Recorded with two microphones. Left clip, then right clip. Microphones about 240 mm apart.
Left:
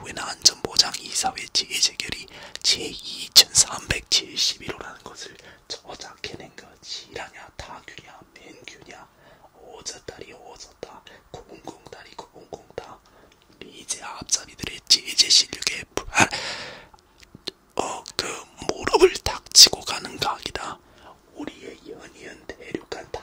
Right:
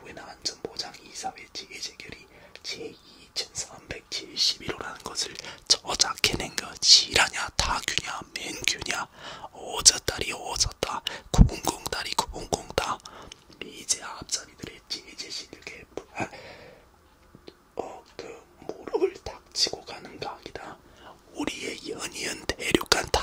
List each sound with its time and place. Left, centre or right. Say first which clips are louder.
0.0 s whispering: left 14 dB; left
4.4 s whispering: left 1 dB; centre
5.4 s whispering: right 12 dB; right
13.9 s whispering: left 5 dB; centre; by 20.7 s left
21.4 s whispering: right 5 dB; centre; by 23.0 s right